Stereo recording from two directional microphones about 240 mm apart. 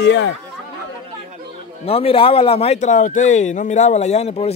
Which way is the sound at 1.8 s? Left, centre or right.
Left.